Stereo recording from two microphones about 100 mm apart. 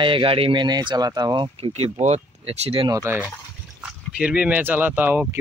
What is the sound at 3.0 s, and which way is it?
Speech, 15° right (ahead or behind).